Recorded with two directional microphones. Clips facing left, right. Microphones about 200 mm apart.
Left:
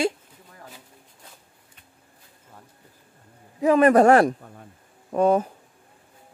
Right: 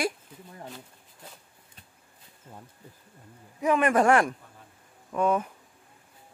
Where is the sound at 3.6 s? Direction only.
35° left (ahead or behind).